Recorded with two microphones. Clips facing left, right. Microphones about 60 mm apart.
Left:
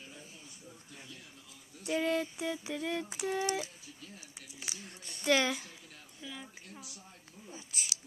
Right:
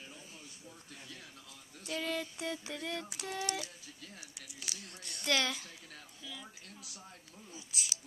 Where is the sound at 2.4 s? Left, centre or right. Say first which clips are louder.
Left 3 dB; centre.